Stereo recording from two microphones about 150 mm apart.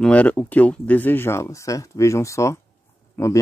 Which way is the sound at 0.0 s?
10° left (ahead or behind).